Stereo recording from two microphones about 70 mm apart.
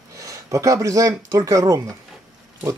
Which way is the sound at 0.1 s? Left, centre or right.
Right.